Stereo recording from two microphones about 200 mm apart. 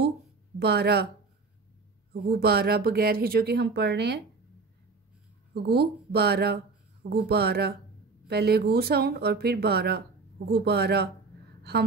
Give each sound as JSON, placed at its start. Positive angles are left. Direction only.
{"t": 0.6, "sound": "speech", "side_deg": -55}
{"t": 2.2, "sound": "speech", "side_deg": -50}
{"t": 5.5, "sound": "speech", "side_deg": -55}